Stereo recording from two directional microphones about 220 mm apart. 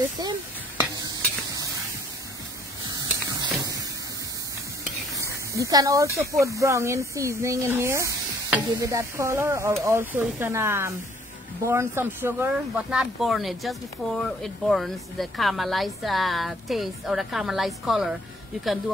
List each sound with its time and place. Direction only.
0.9 s stir: 15° right (ahead or behind)
2.8 s spray: 20° right (ahead or behind)
5.1 s snake: 15° right (ahead or behind)
6.3 s speech: 15° right (ahead or behind)